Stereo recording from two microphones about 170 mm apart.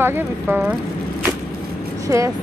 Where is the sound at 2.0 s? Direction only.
20° right (ahead or behind).